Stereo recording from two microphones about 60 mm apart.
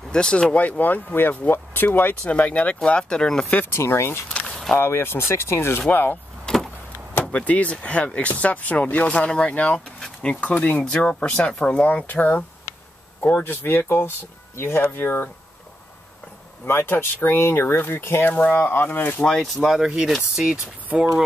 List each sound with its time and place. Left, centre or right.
0.1 s speech: centre
2.8 s speech: centre
3.7 s speech: left
6.5 s vehicle: centre
7.2 s speech: left
13.4 s speech: left
16.6 s speech: left
18.3 s speech: left
19.2 s speech: centre
19.5 s speech: centre
20.6 s speech: right